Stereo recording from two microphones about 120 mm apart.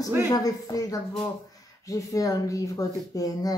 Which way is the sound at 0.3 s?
30° left (ahead or behind).